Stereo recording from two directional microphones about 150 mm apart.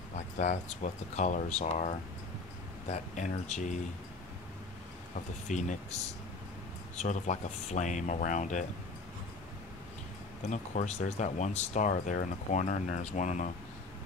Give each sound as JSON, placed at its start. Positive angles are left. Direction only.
{"t": 0.1, "sound": "speech", "side_deg": 50}
{"t": 5.5, "sound": "speech", "side_deg": 55}
{"t": 7.0, "sound": "speech", "side_deg": 50}
{"t": 10.4, "sound": "speech", "side_deg": 55}